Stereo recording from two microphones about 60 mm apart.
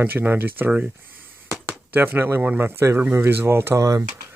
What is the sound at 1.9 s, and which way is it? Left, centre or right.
Speech, right.